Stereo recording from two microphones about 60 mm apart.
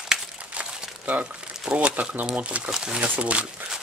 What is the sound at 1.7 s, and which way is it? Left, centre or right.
Speech, right.